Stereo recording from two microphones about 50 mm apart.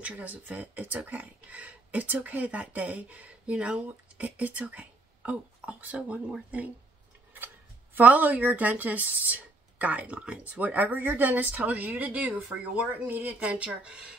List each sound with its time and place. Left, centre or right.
0.0 s speech: right
4.2 s speech: right
7.3 s speech: right; by 14.1 s centre